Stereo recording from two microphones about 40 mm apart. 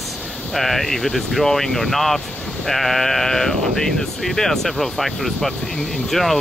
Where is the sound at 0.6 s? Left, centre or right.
Centre.